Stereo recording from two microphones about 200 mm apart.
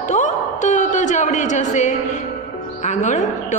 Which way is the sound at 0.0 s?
35° left (ahead or behind).